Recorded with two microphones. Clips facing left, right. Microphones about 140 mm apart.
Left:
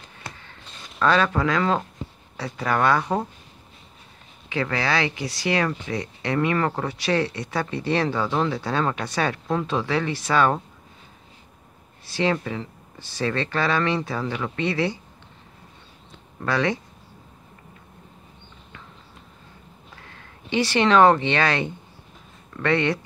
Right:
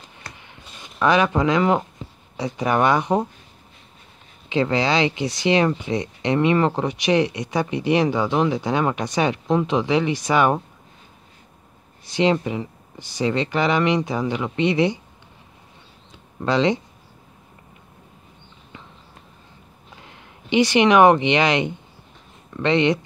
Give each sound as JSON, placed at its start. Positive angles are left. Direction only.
{"t": 0.4, "sound": "a sound", "side_deg": -15}
{"t": 2.3, "sound": "speech", "side_deg": -20}
{"t": 4.5, "sound": "speech", "side_deg": -25}
{"t": 12.1, "sound": "speech", "side_deg": -20}
{"t": 16.4, "sound": "speech", "side_deg": -20}
{"t": 20.0, "sound": "speech", "side_deg": -20}